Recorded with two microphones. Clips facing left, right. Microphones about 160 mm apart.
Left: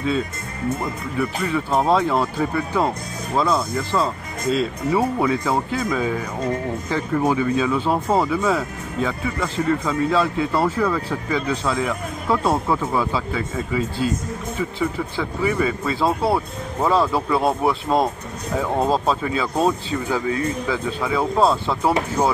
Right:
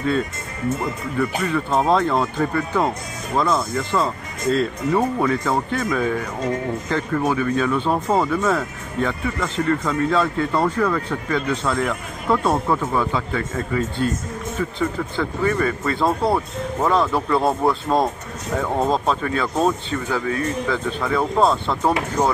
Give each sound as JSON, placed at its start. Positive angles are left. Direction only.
{"t": 1.1, "sound": "speech", "side_deg": 5}
{"t": 3.9, "sound": "speech", "side_deg": 0}